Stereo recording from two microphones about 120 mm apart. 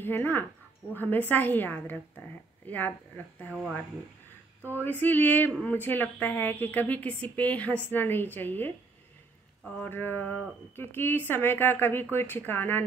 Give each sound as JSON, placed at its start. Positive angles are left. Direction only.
{"t": 0.0, "sound": "speech", "side_deg": 15}
{"t": 4.8, "sound": "speech", "side_deg": 15}
{"t": 9.8, "sound": "speech", "side_deg": 15}